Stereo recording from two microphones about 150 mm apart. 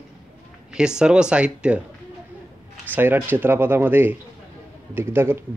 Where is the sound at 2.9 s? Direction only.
15° right (ahead or behind).